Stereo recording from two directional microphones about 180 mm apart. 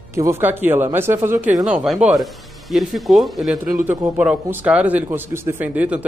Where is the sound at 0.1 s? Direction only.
15° right (ahead or behind).